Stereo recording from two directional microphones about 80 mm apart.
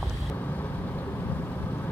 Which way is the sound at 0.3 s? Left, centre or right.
Left.